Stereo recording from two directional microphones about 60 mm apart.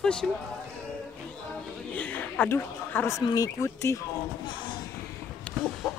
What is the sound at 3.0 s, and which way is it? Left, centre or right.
Speech, left.